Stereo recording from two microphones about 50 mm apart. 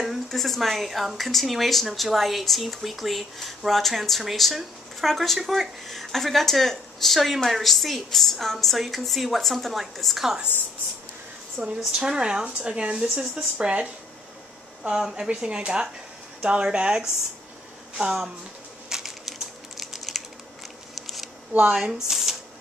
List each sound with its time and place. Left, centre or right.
0.3 s speech: centre
11.6 s speech: centre
13.0 s speech: centre
13.3 s speech: right
18.9 s typing: centre
21.7 s speech: centre
22.1 s a sound: centre